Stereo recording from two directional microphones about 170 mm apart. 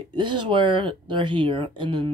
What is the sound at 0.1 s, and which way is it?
Speech, 30° right (ahead or behind).